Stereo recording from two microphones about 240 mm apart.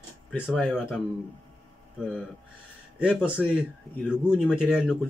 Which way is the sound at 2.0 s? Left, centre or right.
Centre.